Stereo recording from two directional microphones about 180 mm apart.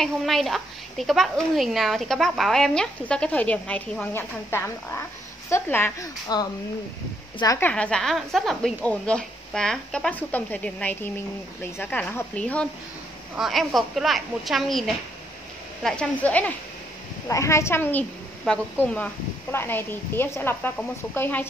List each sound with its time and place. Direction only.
0.0 s a woman's voice: centre (ahead or behind); by 6.5 s 20° left (ahead or behind)
7.6 s a woman's voice: 5° left (ahead or behind)